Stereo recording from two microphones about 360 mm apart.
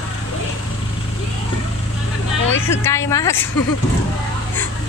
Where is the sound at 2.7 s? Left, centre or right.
Centre.